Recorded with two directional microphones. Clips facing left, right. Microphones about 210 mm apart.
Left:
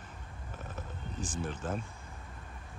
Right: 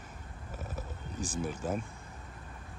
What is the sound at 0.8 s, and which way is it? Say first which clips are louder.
Speech: right 1 dB; 10° right (ahead or behind).